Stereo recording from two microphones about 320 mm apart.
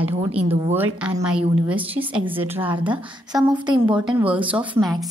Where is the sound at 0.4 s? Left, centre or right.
Centre.